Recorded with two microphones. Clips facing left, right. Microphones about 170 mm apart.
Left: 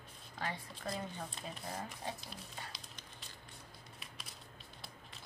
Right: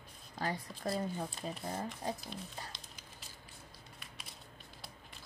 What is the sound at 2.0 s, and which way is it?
Speech, 40° right (ahead or behind).